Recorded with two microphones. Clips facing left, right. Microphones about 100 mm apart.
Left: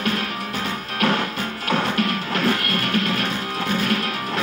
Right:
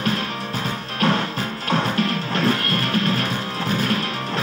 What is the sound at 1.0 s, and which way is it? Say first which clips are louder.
Music: right 1 dB; 30° right (ahead or behind).